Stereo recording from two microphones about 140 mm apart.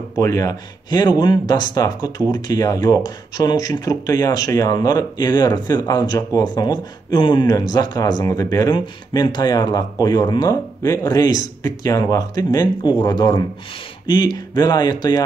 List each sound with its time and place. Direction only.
0.2 s speech: 25° left (ahead or behind)